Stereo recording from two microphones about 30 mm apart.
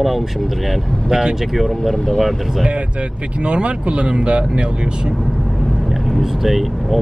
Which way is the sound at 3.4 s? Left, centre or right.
Right.